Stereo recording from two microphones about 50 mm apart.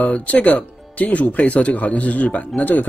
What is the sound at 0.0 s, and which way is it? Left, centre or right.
Speech, left.